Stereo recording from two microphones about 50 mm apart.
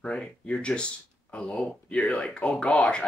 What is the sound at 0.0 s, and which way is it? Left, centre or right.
Speech, centre.